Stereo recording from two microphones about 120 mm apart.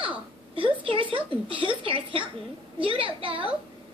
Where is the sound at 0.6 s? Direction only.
45° right (ahead or behind).